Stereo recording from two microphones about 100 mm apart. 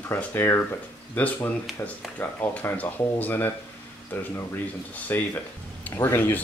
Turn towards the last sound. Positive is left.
turn(degrees=25)  # may be behind; listen again after turning